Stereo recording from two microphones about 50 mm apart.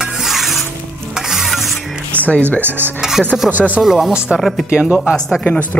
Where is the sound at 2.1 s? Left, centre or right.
Left.